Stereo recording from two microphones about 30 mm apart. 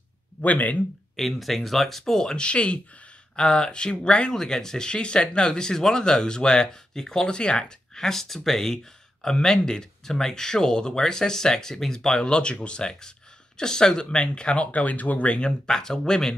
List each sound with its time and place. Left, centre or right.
0.4 s speech: left
1.1 s speech: centre
2.3 s speech: left
3.3 s speech: left
4.3 s speech: centre
7.2 s speech: left
15.2 s speech: left
15.6 s speech: left